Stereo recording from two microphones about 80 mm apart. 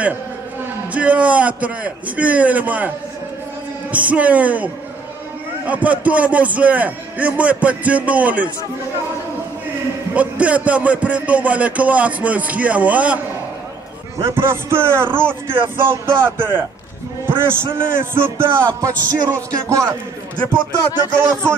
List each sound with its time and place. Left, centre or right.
0.9 s a man's voice: centre
3.9 s speech: centre
5.7 s a man's voice: centre
10.1 s a man's voice: centre
14.2 s a man's voice: right
18.8 s music: right
21.0 s speech: right